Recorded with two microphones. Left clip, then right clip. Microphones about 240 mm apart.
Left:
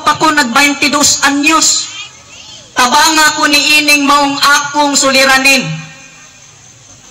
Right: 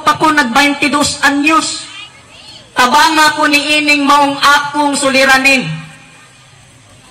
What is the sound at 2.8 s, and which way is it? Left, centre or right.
A man's voice, left.